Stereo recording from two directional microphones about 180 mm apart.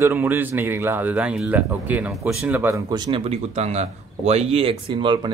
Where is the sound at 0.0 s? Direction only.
10° right (ahead or behind).